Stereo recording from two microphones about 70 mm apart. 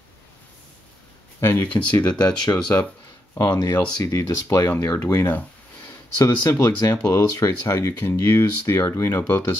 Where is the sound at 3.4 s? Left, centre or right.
Left.